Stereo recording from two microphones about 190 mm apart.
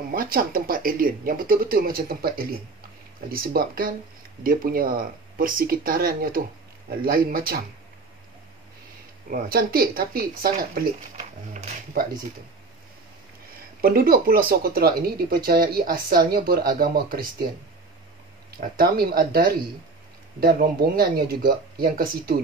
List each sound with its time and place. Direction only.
0.1 s speech: 50° right (ahead or behind)
9.3 s speech: 50° right (ahead or behind)
13.7 s speech: 50° right (ahead or behind)
18.6 s speech: 50° right (ahead or behind)